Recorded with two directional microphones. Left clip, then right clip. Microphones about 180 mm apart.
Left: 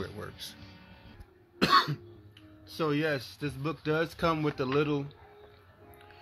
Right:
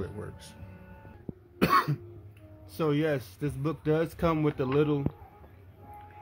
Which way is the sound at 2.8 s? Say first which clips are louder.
Right 2 dB; 10° right (ahead or behind).